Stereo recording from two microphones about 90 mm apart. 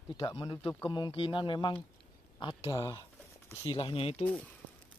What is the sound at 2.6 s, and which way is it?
Speech, 40° left (ahead or behind).